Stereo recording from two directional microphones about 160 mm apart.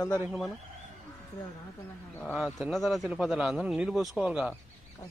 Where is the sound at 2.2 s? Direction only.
Centre (ahead or behind).